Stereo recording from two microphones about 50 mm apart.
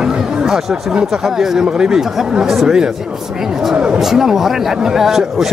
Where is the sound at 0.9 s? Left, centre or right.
Centre.